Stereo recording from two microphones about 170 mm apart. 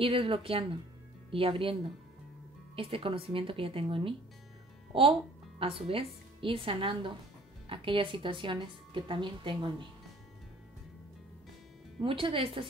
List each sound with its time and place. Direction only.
0.0 s speech: 30° right (ahead or behind)
12.0 s speech: 30° right (ahead or behind)